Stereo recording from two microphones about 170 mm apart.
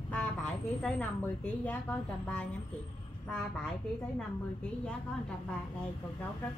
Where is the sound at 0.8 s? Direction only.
5° left (ahead or behind).